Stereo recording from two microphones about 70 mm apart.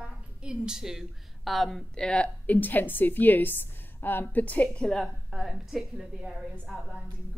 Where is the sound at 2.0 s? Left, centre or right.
Centre.